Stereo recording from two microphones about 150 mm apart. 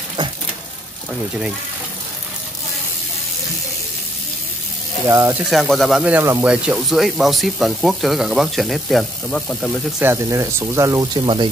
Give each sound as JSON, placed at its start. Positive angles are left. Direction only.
{"t": 5.0, "sound": "speech", "side_deg": -20}
{"t": 5.5, "sound": "speech", "side_deg": 0}
{"t": 9.9, "sound": "speech", "side_deg": -15}